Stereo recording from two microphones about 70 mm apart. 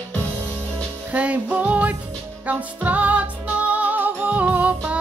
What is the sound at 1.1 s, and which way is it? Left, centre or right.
Music, right.